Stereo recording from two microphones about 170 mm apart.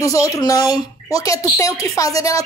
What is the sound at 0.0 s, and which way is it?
A woman's voice, 20° left (ahead or behind).